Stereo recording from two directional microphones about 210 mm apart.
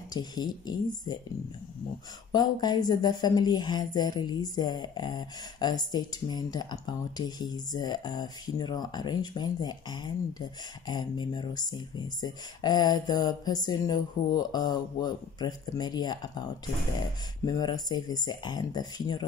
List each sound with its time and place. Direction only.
0.1 s speech: 20° left (ahead or behind)
2.3 s speech: 20° left (ahead or behind)
17.5 s speech: 20° left (ahead or behind)